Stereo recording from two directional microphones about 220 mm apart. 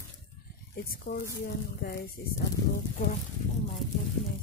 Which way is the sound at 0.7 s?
40° left (ahead or behind).